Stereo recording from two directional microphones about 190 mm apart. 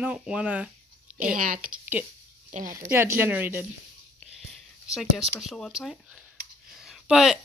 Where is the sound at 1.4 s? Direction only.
45° right (ahead or behind).